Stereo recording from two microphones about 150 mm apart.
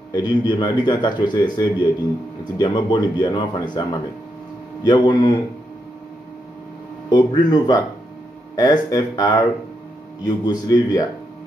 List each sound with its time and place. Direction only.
0.1 s a man's voice: 30° left (ahead or behind)
4.8 s speech: 30° left (ahead or behind)
7.1 s a man's voice: 30° left (ahead or behind)